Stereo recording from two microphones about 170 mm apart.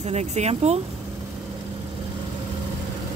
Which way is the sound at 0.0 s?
40° right (ahead or behind).